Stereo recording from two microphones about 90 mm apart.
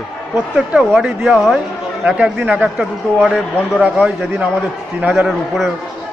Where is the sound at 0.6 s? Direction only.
10° right (ahead or behind).